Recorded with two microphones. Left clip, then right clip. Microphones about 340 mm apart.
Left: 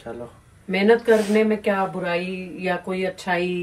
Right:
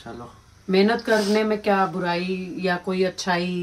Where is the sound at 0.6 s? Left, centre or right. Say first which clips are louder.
Left 3 dB; centre.